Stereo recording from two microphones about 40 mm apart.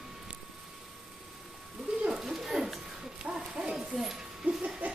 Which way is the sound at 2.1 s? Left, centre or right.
Centre.